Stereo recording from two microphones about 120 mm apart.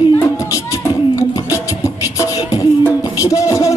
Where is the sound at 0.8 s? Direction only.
25° left (ahead or behind).